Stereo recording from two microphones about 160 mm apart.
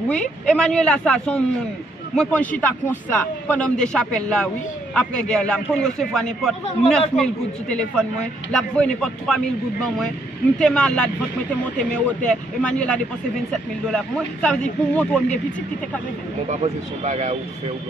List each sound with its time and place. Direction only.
0.1 s speech: 5° left (ahead or behind)
16.4 s speech: 45° right (ahead or behind)